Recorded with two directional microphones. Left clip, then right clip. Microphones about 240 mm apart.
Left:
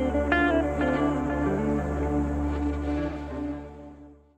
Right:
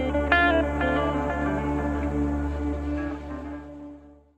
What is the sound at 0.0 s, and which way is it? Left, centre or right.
Music, centre.